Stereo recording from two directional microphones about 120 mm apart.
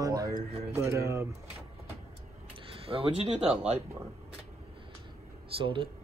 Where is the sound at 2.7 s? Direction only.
50° right (ahead or behind).